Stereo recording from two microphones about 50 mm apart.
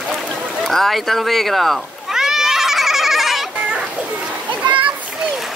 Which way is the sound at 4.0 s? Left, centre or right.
Right.